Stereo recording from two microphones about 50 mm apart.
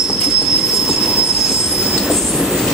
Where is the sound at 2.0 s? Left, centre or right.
Centre.